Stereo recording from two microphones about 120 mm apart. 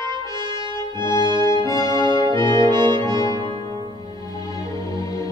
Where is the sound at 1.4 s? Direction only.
30° left (ahead or behind).